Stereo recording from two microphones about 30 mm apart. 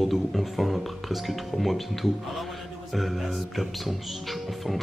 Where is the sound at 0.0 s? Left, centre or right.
Centre.